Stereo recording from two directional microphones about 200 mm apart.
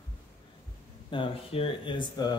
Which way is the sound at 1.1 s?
25° left (ahead or behind).